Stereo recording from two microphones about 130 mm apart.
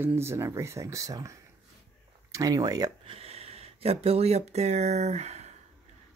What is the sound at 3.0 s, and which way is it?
Speech, 50° right (ahead or behind).